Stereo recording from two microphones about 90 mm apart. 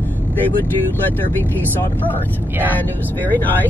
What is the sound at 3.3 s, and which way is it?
Speech, 20° left (ahead or behind).